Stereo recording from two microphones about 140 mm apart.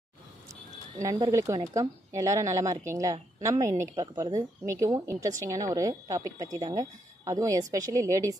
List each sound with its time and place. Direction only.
1.3 s speech: 25° right (ahead or behind)